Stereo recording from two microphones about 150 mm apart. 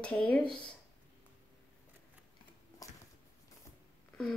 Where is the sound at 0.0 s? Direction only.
10° left (ahead or behind).